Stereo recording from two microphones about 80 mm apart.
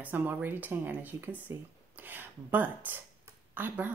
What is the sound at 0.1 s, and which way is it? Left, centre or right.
A woman's voice, right.